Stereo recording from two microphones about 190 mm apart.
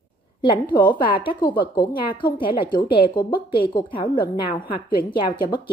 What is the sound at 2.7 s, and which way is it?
A woman's voice, 25° left (ahead or behind).